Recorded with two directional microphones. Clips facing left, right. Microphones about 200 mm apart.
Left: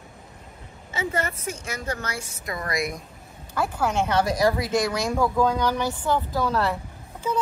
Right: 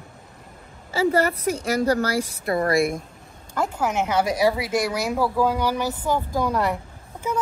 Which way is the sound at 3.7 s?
10° right (ahead or behind).